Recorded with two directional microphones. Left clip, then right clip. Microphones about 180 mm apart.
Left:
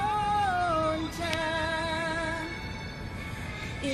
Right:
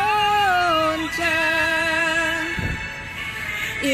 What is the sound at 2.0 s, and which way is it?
Music, 55° right (ahead or behind).